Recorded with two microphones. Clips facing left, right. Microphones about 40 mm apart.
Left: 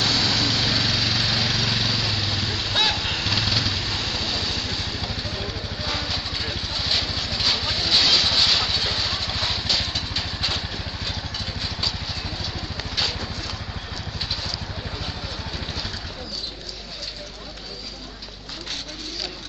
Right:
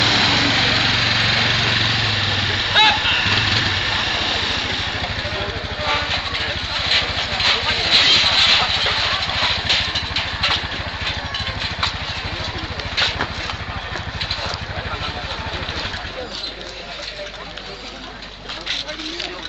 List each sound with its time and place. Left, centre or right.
0.0 s lawn mower: right
11.1 s vehicle: right
12.9 s vehicle: right